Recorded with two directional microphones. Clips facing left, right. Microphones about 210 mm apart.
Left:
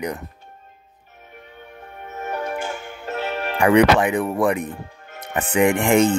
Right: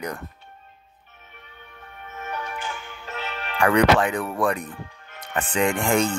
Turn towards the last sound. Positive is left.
turn(degrees=20)  # may be behind; listen again after turning